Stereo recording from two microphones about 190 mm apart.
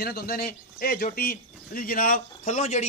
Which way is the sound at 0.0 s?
50° left (ahead or behind).